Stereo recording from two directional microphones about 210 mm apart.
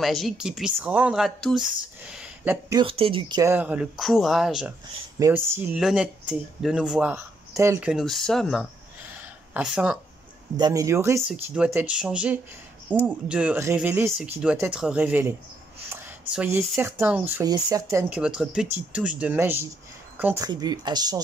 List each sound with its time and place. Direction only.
0.0 s speech: centre (ahead or behind)
2.7 s speech: 25° right (ahead or behind)
7.9 s speech: centre (ahead or behind)
9.1 s a sound: 5° right (ahead or behind)
10.6 s speech: 15° right (ahead or behind)
17.9 s speech: 5° right (ahead or behind)